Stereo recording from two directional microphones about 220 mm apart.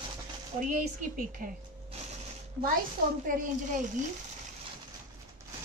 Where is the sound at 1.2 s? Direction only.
40° right (ahead or behind).